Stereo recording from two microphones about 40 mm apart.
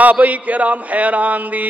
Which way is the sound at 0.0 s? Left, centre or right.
Right.